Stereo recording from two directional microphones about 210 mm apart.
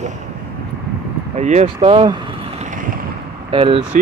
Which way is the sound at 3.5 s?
25° right (ahead or behind).